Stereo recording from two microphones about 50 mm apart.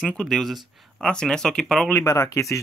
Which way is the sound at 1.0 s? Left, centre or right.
Centre.